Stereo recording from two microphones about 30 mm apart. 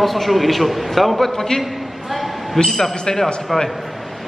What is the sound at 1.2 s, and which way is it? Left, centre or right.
Speech, centre.